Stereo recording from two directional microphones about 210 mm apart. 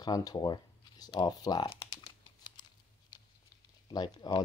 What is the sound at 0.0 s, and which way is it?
Speech, 20° left (ahead or behind).